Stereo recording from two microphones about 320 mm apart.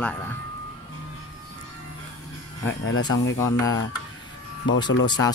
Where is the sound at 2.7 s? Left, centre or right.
Left.